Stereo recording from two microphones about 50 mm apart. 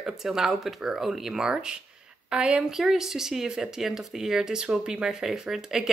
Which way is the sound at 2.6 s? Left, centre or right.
Centre.